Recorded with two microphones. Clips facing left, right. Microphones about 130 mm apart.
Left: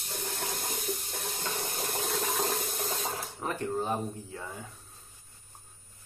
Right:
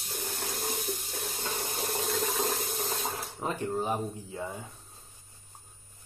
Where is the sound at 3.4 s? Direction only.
15° right (ahead or behind).